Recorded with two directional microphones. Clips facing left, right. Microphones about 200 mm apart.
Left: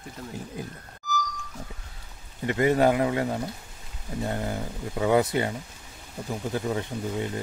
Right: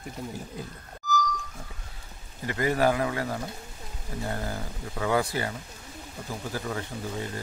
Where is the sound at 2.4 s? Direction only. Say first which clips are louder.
Left 4 dB; 25° left (ahead or behind).